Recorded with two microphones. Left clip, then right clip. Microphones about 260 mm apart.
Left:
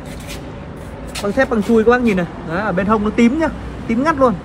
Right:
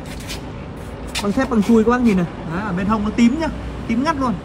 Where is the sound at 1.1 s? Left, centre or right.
Centre.